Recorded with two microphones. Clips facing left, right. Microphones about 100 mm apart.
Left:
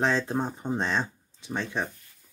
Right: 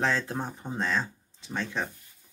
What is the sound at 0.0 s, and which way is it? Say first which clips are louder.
Speech: left 3 dB; 25° left (ahead or behind).